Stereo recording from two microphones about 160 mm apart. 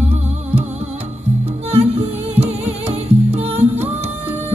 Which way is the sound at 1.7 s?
40° right (ahead or behind).